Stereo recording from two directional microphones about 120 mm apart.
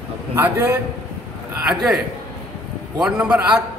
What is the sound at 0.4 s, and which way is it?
Speech, 20° right (ahead or behind).